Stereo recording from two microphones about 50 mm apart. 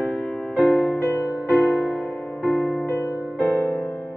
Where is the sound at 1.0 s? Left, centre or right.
Left.